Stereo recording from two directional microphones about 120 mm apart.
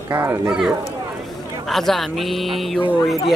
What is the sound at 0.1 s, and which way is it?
Speech, 20° right (ahead or behind).